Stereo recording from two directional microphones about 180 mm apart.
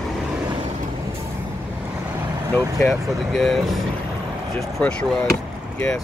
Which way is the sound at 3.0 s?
Centre (ahead or behind).